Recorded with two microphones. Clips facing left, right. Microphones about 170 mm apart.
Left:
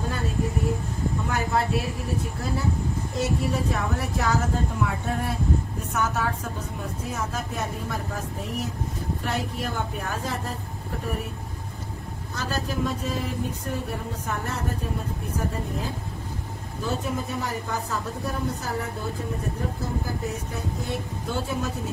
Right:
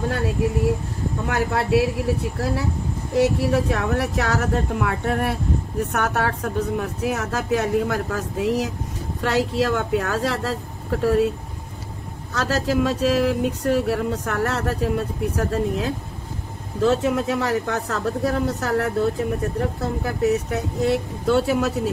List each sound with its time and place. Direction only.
1.2 s a woman's voice: 70° right (ahead or behind)
3.2 s a woman's voice: 70° right (ahead or behind); by 11.3 s 90° right
12.4 s a woman's voice: 90° right